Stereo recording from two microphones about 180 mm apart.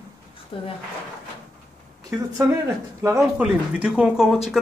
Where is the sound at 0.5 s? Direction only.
30° left (ahead or behind).